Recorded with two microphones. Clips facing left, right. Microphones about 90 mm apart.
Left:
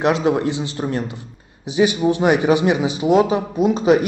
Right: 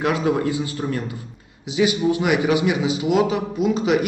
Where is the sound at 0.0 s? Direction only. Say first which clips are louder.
Left 3 dB; 25° left (ahead or behind).